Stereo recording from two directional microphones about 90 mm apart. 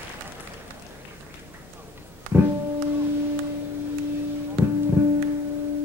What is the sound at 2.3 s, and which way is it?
Music, 25° right (ahead or behind).